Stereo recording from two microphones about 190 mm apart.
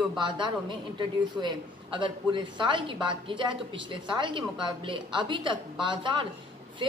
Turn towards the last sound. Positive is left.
turn(degrees=-25)  # may be behind; listen again after turning